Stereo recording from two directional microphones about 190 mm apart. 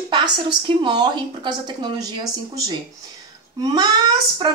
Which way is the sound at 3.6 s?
20° right (ahead or behind).